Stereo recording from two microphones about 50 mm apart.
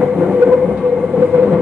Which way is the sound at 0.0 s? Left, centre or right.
Centre.